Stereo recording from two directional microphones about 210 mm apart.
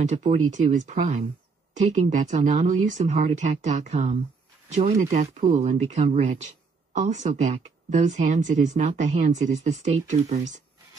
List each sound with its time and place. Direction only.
0.1 s speech: 35° right (ahead or behind)